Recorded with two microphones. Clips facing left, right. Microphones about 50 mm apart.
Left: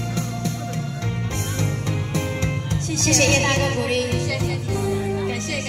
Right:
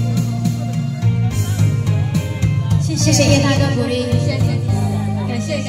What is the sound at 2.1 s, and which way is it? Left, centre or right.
Music, left.